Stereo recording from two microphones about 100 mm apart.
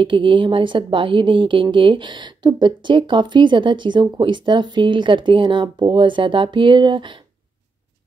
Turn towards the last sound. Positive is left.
turn(degrees=-55)  # may be behind; listen again after turning